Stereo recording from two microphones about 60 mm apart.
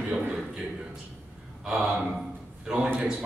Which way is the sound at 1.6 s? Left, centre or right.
Centre.